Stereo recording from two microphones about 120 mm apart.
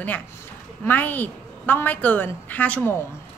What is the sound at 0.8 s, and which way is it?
A woman's voice, 15° left (ahead or behind).